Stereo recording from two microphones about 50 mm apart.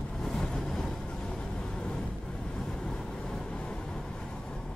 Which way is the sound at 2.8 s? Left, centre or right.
Centre.